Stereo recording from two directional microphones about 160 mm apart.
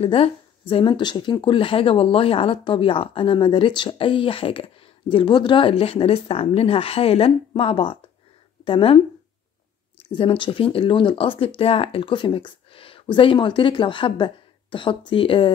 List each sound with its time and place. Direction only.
0.0 s speech: 35° left (ahead or behind)
10.1 s speech: 30° left (ahead or behind)